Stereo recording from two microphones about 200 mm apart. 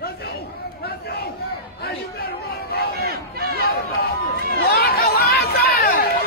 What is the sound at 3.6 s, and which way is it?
Chatter, 50° left (ahead or behind).